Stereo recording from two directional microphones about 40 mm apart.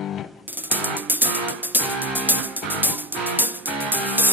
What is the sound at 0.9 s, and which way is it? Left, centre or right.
Music, right.